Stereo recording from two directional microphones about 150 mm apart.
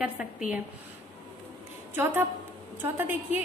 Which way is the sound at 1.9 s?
15° right (ahead or behind).